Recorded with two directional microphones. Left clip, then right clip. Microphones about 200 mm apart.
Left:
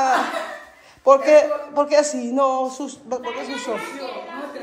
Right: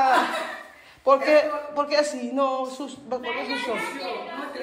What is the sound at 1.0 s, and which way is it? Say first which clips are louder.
A man's voice: left 5 dB; 35° left (ahead or behind).